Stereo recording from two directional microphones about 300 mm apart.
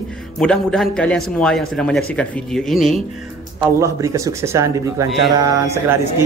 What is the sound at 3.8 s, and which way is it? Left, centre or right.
Speech, centre.